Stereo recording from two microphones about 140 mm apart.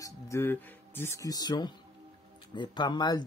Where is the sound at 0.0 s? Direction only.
20° left (ahead or behind).